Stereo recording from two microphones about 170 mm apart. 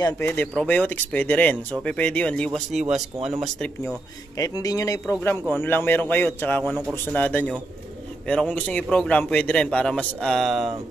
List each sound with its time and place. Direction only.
0.0 s a man's voice: 15° left (ahead or behind)
4.4 s a man's voice: 20° left (ahead or behind); by 10.7 s centre (ahead or behind)